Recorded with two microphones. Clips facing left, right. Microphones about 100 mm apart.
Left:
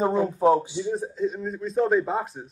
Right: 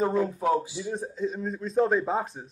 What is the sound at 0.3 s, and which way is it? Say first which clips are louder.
Speech: left 5 dB; 30° left (ahead or behind).